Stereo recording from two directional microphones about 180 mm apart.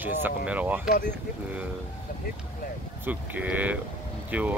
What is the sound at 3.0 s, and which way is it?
Speech, 10° right (ahead or behind).